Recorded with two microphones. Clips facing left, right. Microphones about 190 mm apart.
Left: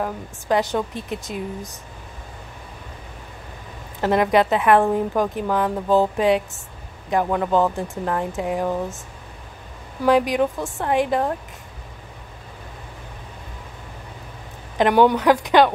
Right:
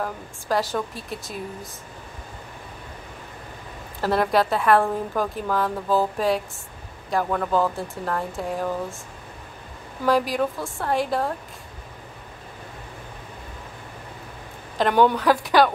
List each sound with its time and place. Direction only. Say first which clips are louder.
0.0 s a woman's voice: left 3 dB; 20° left (ahead or behind)
4.0 s a woman's voice: left 3 dB; 20° left (ahead or behind)
10.0 s a woman's voice: left 4 dB; 20° left (ahead or behind)
14.8 s speech: left 3 dB; 15° left (ahead or behind)